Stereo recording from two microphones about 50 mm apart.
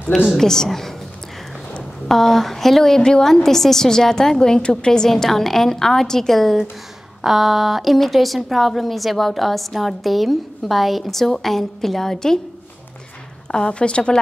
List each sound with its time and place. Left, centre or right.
0.4 s a woman's voice: centre
13.5 s a woman's voice: centre